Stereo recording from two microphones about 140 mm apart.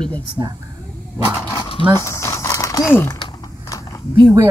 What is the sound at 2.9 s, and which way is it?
Speech, 15° left (ahead or behind).